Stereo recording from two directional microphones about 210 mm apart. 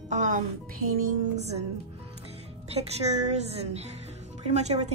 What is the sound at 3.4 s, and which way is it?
A woman's voice, 30° right (ahead or behind).